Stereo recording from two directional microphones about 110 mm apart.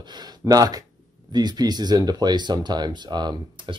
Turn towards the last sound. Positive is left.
turn(degrees=-40)  # may be behind; listen again after turning